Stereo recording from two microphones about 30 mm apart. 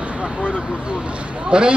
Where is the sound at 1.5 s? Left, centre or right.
Right.